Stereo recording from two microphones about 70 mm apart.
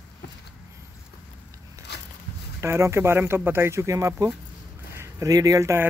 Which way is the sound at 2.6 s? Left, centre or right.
Right.